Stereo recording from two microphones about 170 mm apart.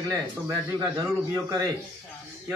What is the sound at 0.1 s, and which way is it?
A man's voice, 20° right (ahead or behind).